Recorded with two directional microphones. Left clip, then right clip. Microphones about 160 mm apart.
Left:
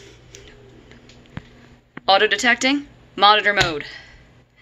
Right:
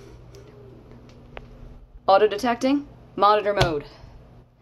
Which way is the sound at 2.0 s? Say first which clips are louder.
Left 2 dB; 15° right (ahead or behind).